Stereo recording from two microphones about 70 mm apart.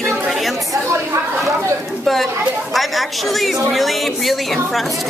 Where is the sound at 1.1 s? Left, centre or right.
Right.